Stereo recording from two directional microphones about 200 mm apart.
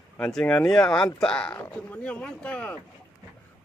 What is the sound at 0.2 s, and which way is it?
Speech, 5° left (ahead or behind).